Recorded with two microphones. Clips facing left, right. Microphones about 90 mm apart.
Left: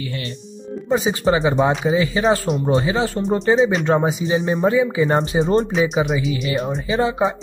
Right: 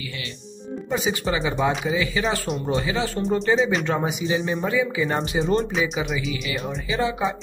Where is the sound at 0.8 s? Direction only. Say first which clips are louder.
Left 7 dB; 30° left (ahead or behind).